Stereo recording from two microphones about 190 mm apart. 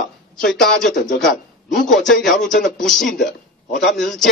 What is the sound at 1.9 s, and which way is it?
Speech, centre (ahead or behind).